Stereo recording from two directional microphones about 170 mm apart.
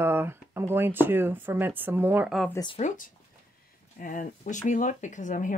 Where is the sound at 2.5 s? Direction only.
25° left (ahead or behind).